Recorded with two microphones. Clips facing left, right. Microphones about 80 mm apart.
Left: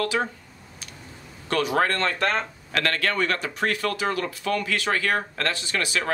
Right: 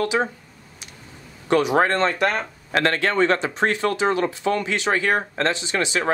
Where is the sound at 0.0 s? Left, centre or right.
Centre.